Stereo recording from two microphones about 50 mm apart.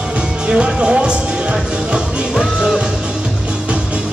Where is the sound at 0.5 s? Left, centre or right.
Right.